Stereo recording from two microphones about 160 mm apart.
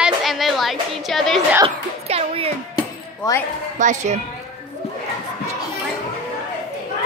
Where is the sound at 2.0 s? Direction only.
40° right (ahead or behind).